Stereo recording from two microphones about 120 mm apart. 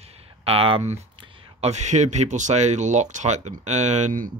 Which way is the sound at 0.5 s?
50° right (ahead or behind).